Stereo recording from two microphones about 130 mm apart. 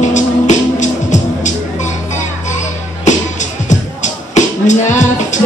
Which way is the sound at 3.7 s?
70° left (ahead or behind).